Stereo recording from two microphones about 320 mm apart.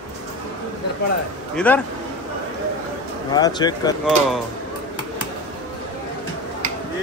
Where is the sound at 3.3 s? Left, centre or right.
Centre.